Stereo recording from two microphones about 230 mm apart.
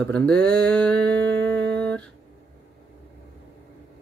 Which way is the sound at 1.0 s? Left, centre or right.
Right.